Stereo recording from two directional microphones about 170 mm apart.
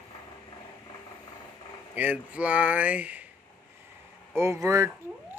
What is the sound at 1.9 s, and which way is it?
Speech, 10° right (ahead or behind).